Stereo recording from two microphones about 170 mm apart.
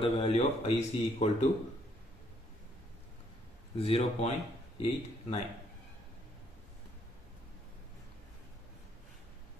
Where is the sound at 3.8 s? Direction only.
35° left (ahead or behind).